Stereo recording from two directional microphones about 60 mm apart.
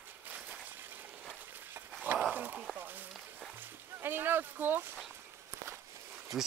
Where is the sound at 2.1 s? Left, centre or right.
Right.